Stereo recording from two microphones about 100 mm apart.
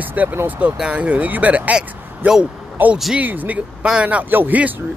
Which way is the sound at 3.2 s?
15° right (ahead or behind).